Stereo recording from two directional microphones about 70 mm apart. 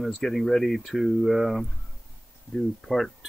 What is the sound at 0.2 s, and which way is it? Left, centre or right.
Speech, centre.